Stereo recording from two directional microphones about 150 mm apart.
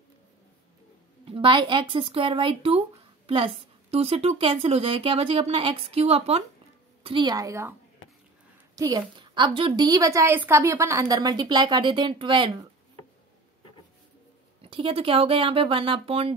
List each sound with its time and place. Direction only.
1.2 s a woman's voice: 35° right (ahead or behind)
7.0 s a sound: 35° right (ahead or behind)
7.2 s a woman's voice: 25° right (ahead or behind)
8.7 s a woman's voice: 30° right (ahead or behind)
14.6 s a woman's voice: 35° right (ahead or behind)